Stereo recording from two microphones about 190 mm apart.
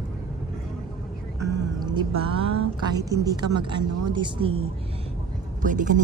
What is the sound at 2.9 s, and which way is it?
A woman's voice, 20° right (ahead or behind).